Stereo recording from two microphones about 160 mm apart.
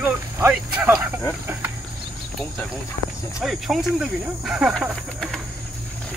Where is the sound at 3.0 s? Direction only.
40° left (ahead or behind).